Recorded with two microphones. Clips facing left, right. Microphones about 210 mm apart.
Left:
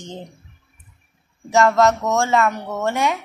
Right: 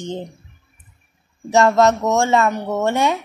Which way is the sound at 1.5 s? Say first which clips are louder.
Right 2 dB; 25° right (ahead or behind).